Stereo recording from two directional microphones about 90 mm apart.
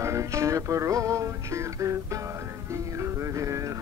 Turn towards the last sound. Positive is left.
turn(degrees=-35)  # may be behind; listen again after turning